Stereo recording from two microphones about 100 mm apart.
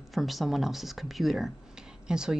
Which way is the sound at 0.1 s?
Centre (ahead or behind).